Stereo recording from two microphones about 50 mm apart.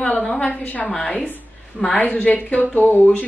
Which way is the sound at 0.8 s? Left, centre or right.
Centre.